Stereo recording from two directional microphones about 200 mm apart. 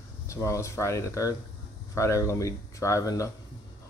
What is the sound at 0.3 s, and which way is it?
Speech, 15° left (ahead or behind).